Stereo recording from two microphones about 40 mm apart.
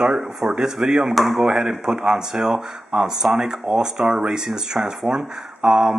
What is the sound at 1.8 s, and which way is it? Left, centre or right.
Speech, centre.